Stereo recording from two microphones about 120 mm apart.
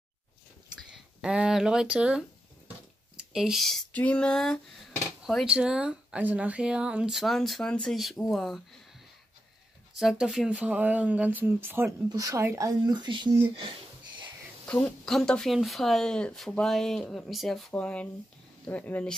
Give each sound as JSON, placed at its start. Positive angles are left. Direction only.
{"t": 0.8, "sound": "speech", "side_deg": -5}
{"t": 3.3, "sound": "speech", "side_deg": -5}
{"t": 3.9, "sound": "female singing", "side_deg": 10}
{"t": 5.2, "sound": "speech", "side_deg": -5}
{"t": 9.9, "sound": "speech", "side_deg": -5}
{"t": 12.1, "sound": "speech", "side_deg": -30}
{"t": 13.6, "sound": "a sound", "side_deg": -45}
{"t": 14.7, "sound": "speech", "side_deg": 10}
{"t": 18.7, "sound": "female singing", "side_deg": 15}